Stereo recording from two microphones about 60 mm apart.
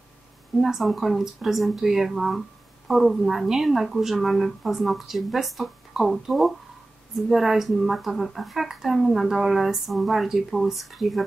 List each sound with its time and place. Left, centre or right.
0.6 s speech: centre